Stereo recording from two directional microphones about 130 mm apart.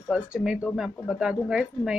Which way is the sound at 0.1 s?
5° right (ahead or behind).